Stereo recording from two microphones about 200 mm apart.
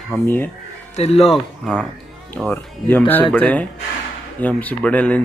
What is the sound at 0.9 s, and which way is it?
Speech, 30° left (ahead or behind).